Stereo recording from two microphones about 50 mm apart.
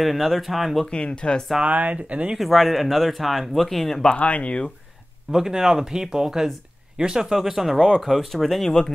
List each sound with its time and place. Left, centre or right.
0.0 s speech: centre
0.8 s speech: centre
1.6 s speech: right
2.3 s speech: centre
4.2 s speech: left
5.3 s speech: centre